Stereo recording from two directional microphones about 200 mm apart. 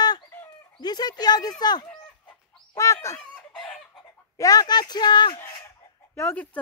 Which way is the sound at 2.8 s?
15° left (ahead or behind).